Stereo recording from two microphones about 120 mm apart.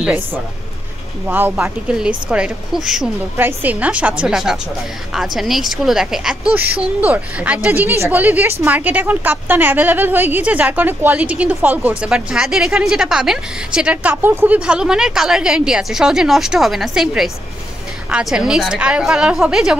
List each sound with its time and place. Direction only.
0.0 s a woman's voice: 15° right (ahead or behind)
3.3 s a woman's voice: 15° right (ahead or behind)